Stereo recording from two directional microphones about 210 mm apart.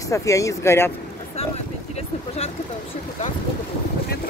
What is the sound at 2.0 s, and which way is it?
Speech, 30° left (ahead or behind).